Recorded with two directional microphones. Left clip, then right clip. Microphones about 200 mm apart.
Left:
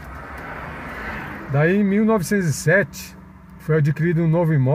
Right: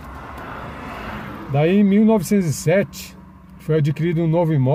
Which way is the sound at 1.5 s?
15° right (ahead or behind).